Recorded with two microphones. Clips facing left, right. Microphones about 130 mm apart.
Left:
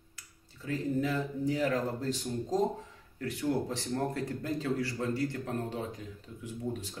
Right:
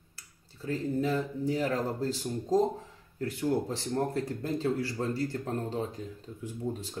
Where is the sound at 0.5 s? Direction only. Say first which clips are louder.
Right 1 dB; 30° right (ahead or behind).